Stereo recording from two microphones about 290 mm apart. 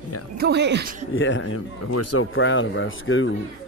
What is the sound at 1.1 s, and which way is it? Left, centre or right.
Speech, left.